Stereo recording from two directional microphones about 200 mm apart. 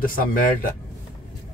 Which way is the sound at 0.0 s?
45° left (ahead or behind).